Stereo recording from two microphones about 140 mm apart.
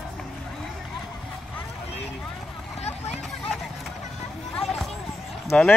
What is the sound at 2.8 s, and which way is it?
Vehicle, 50° left (ahead or behind).